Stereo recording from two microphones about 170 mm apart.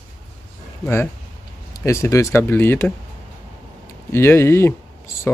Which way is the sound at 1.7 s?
15° left (ahead or behind).